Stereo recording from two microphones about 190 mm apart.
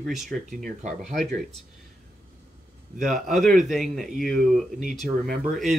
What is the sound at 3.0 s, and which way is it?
Speech, centre (ahead or behind).